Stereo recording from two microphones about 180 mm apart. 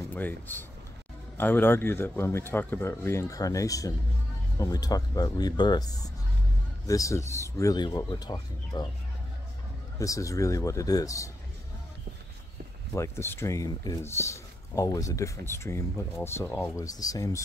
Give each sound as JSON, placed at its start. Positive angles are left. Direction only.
{"t": 0.1, "sound": "speech", "side_deg": 10}
{"t": 9.9, "sound": "speech", "side_deg": 15}
{"t": 12.9, "sound": "speech", "side_deg": 15}